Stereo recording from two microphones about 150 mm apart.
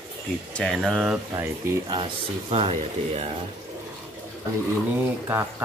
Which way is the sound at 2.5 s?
40° right (ahead or behind).